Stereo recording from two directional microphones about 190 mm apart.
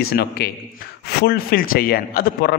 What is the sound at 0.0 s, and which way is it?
A man's voice, 55° left (ahead or behind).